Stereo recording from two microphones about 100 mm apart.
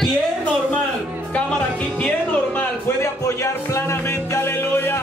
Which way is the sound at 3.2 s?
30° left (ahead or behind).